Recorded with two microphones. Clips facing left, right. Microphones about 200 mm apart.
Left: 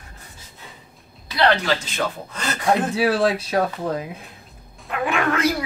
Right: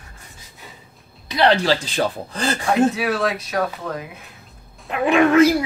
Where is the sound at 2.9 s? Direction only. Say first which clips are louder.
Left 3 dB; 30° left (ahead or behind).